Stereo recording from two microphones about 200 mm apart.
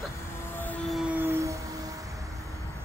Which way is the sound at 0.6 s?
5° left (ahead or behind).